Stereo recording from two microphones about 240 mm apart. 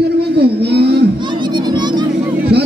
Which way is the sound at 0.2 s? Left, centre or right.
Right.